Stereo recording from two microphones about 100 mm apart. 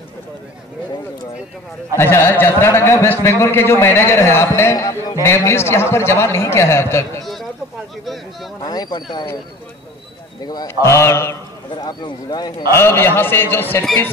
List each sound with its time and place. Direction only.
2.0 s a man's voice: 25° left (ahead or behind)
8.0 s speech: centre (ahead or behind)
8.6 s speech: 40° left (ahead or behind)
10.4 s a man's voice: 40° left (ahead or behind)
10.7 s a man's voice: 25° left (ahead or behind)
11.8 s speech: 45° left (ahead or behind)
12.7 s a man's voice: 25° left (ahead or behind)